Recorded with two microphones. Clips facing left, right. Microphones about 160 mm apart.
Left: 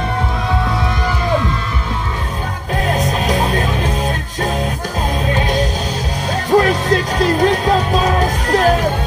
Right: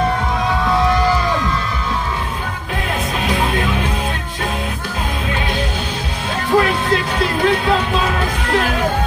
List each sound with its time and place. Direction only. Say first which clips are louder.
3.3 s music: left 1 dB; 40° left (ahead or behind)
5.3 s music: left 5 dB; 40° left (ahead or behind)